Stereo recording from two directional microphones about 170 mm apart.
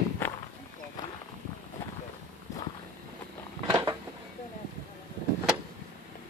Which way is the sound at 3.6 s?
25° right (ahead or behind).